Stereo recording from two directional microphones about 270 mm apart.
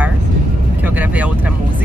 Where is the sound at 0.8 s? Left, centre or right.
Centre.